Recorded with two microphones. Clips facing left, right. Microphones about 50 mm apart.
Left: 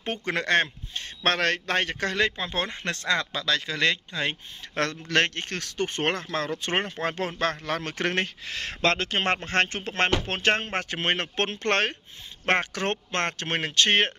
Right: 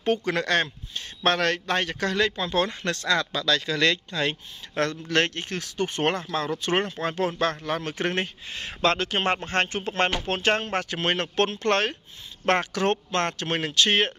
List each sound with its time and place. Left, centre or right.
0.0 s speech: left
2.3 s speech: left
4.7 s speech: left
8.5 s speech: left
8.8 s speech: left